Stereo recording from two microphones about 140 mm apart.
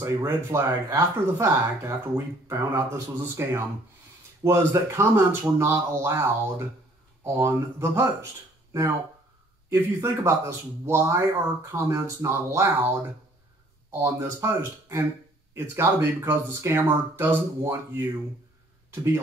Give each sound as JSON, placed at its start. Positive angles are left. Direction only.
{"t": 0.0, "sound": "speech", "side_deg": -20}
{"t": 9.8, "sound": "speech", "side_deg": -20}
{"t": 14.0, "sound": "speech", "side_deg": -20}